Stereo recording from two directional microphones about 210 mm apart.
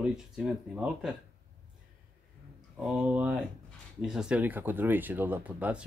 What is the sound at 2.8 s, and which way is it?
Speech, 5° right (ahead or behind).